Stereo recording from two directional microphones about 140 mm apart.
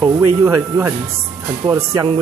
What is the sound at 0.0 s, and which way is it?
Speech, 25° right (ahead or behind).